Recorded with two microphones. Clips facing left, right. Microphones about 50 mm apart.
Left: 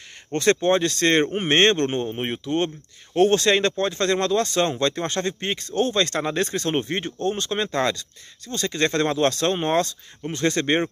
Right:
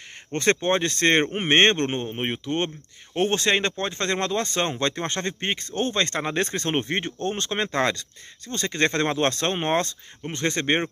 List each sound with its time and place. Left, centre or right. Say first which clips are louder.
0.3 s speech: left 3 dB; right
6.4 s speech: left 2 dB; right